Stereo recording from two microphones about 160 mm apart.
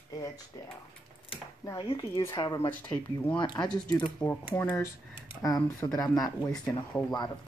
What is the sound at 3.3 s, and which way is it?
Speech, 25° left (ahead or behind).